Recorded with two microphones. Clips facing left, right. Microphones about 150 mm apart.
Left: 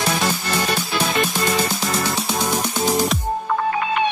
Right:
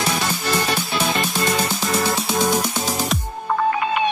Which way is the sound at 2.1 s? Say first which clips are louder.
Right 2 dB; centre (ahead or behind).